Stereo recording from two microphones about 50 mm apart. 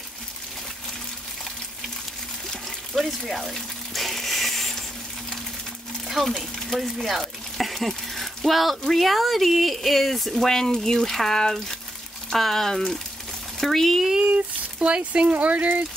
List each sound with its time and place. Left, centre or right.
2.9 s a sound: centre
6.0 s speech: centre
14.8 s speech: right